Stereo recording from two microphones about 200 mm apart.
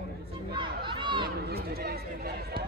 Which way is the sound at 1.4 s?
50° right (ahead or behind).